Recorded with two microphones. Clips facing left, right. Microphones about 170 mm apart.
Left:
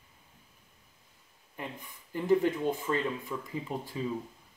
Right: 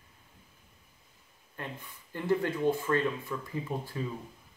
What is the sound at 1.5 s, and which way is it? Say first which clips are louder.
Speech: even; 15° left (ahead or behind).